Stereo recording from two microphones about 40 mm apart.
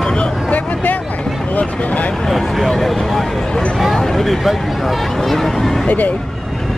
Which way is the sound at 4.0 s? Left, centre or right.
Centre.